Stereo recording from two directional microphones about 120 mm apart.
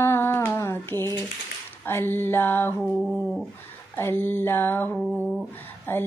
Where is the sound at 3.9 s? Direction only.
20° left (ahead or behind).